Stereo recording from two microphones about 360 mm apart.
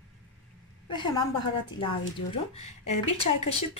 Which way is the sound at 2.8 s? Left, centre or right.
Left.